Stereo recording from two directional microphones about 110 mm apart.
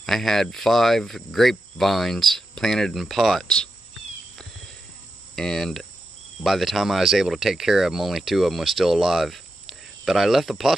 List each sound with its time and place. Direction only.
0.0 s speech: 5° left (ahead or behind)
5.3 s speech: 5° left (ahead or behind)